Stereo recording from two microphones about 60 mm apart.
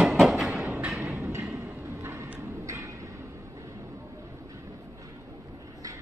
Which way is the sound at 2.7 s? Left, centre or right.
Right.